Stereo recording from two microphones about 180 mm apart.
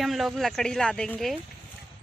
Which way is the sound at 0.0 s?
Centre (ahead or behind).